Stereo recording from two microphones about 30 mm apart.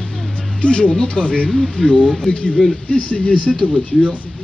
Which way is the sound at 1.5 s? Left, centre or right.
Centre.